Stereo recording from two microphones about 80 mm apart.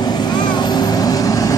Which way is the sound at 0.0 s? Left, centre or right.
Left.